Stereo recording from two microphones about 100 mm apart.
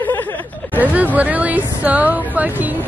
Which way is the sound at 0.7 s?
15° right (ahead or behind).